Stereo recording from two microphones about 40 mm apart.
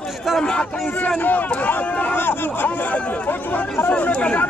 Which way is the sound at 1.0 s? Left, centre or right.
Left.